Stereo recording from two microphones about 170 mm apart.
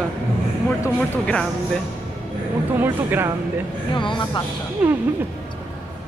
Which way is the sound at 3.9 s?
30° left (ahead or behind).